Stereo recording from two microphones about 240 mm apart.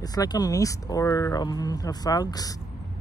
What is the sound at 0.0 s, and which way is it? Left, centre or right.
Speech, centre.